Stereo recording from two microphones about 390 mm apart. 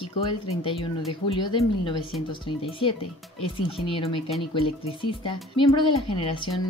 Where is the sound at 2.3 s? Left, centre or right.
Centre.